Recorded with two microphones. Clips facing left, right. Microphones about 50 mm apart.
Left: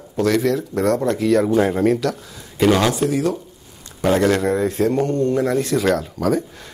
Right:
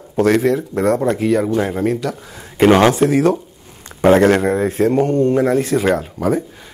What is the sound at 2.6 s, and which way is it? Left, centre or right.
Speech, right.